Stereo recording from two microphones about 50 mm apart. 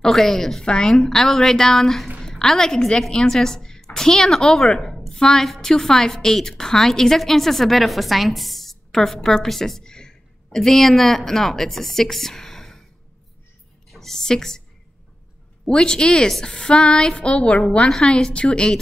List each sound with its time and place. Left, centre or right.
0.0 s a woman's voice: centre
4.9 s a sound: centre
5.2 s a woman's voice: centre
13.8 s a woman's voice: centre
15.6 s a woman's voice: centre